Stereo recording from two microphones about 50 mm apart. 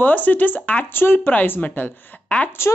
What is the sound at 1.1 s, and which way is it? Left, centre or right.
Speech, left.